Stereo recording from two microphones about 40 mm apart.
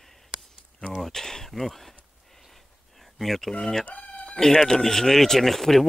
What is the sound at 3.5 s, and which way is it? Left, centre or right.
Speech, left.